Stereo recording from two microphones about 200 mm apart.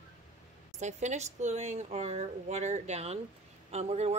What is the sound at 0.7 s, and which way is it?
Speech, 35° right (ahead or behind).